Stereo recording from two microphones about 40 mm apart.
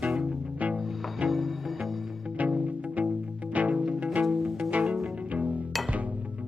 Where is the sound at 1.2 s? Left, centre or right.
Centre.